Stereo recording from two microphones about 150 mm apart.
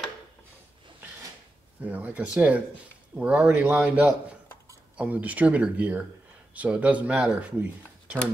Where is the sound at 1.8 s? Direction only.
10° right (ahead or behind).